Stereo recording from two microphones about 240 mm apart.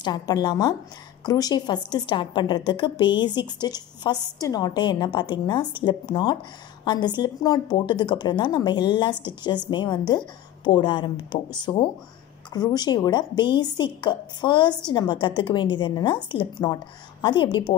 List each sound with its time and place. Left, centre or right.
0.0 s a woman's voice: centre